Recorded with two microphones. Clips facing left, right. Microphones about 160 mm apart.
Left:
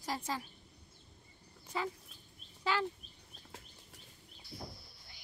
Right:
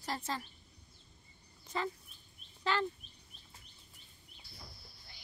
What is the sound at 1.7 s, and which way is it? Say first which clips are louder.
Speech: right 1 dB; 10° left (ahead or behind).